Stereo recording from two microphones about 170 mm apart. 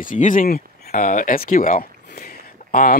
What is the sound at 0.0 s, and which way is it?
Speech, 50° left (ahead or behind).